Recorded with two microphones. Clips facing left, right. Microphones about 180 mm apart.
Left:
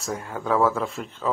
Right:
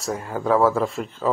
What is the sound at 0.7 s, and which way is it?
Speech, 35° right (ahead or behind).